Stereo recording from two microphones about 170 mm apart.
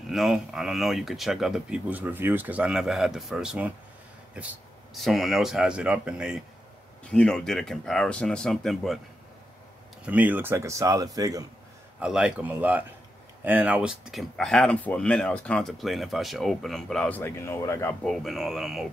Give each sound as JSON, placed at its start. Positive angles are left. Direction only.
{"t": 0.0, "sound": "speech", "side_deg": 0}
{"t": 10.0, "sound": "a man's voice", "side_deg": -10}
{"t": 12.0, "sound": "a man's voice", "side_deg": -5}
{"t": 18.0, "sound": "speech", "side_deg": 0}